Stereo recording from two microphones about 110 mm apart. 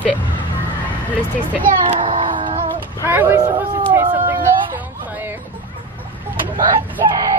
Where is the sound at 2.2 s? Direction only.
45° right (ahead or behind).